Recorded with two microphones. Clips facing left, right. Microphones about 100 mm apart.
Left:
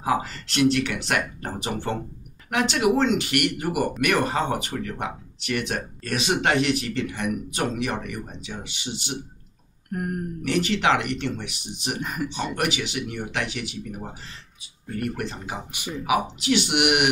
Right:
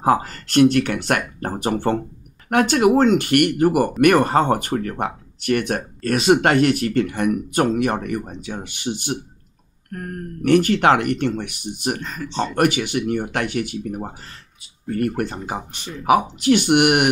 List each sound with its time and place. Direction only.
0.0 s speech: 50° right (ahead or behind)
9.8 s a sound: 10° left (ahead or behind)
10.4 s speech: 50° right (ahead or behind)
12.0 s speech: 15° left (ahead or behind)
12.5 s speech: 50° right (ahead or behind)
15.7 s speech: 10° left (ahead or behind)
16.0 s speech: 45° right (ahead or behind)